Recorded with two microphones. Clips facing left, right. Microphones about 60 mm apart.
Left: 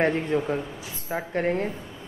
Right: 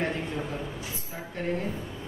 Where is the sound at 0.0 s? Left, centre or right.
Left.